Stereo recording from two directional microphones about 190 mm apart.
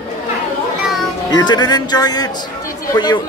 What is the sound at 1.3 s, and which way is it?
Speech, 20° left (ahead or behind).